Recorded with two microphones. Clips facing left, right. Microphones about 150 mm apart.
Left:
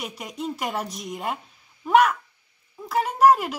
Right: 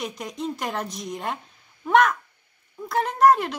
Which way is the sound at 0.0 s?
5° left (ahead or behind).